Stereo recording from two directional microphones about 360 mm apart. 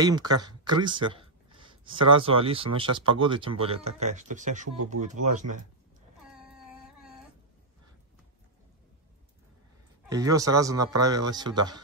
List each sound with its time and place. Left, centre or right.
0.0 s a sound: centre
2.2 s speech: centre
10.0 s speech: centre